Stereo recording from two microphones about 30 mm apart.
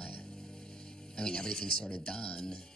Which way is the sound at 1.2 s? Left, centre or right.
Left.